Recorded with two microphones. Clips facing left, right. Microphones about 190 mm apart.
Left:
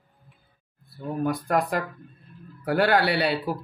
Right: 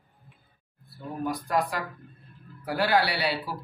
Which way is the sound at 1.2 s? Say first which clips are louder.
Left 3 dB; 55° left (ahead or behind).